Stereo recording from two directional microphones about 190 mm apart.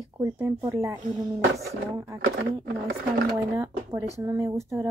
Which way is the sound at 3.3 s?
15° right (ahead or behind).